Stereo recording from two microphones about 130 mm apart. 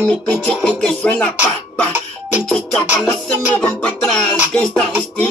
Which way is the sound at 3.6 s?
5° left (ahead or behind).